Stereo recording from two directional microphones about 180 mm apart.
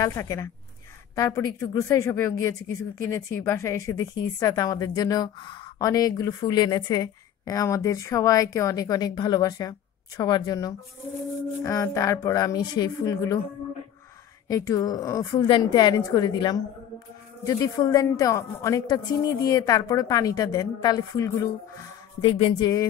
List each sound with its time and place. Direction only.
0.0 s a woman's voice: 15° left (ahead or behind)
14.5 s a woman's voice: 20° left (ahead or behind)